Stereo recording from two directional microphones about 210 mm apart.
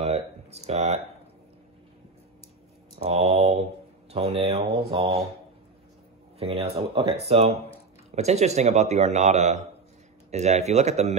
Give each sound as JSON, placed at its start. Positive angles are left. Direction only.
{"t": 0.0, "sound": "a sound", "side_deg": -30}
{"t": 0.7, "sound": "speech", "side_deg": -30}
{"t": 3.0, "sound": "speech", "side_deg": -30}
{"t": 6.4, "sound": "speech", "side_deg": -25}